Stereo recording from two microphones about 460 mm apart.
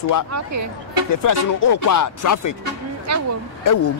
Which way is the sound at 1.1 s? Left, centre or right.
Left.